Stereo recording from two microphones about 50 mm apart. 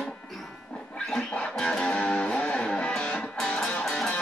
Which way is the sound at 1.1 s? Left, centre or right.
Centre.